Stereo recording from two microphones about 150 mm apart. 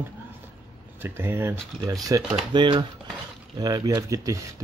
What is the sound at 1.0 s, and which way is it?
Speech, 15° right (ahead or behind).